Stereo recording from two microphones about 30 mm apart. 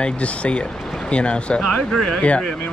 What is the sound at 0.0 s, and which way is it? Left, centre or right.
Speech, left.